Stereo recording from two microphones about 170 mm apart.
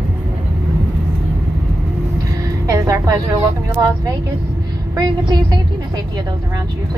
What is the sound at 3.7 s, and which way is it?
Speech, 20° right (ahead or behind).